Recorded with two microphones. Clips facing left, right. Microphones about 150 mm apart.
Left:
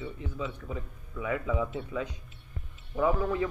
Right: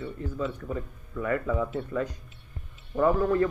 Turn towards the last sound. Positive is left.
turn(degrees=5)  # may be behind; listen again after turning